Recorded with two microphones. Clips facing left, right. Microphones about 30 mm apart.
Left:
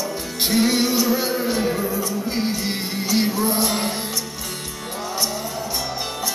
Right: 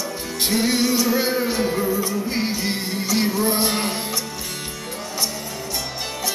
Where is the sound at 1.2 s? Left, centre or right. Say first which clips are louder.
Right 1 dB; centre.